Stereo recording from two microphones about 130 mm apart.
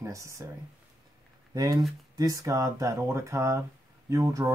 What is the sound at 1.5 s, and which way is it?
Speech, 25° right (ahead or behind).